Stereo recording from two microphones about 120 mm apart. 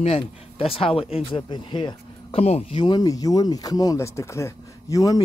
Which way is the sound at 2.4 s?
60° left (ahead or behind).